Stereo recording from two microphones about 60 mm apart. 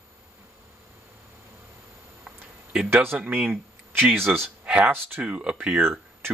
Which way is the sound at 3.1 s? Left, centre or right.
Right.